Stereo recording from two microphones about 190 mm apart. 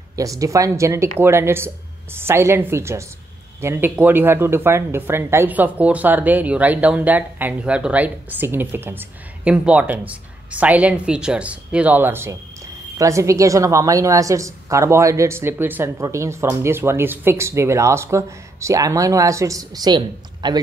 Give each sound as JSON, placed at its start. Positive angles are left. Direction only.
{"t": 0.1, "sound": "speech", "side_deg": -15}